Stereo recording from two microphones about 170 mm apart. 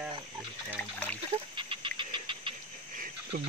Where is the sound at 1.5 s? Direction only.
30° right (ahead or behind).